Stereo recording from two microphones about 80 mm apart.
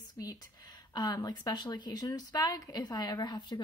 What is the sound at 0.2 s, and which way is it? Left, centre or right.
Speech, left.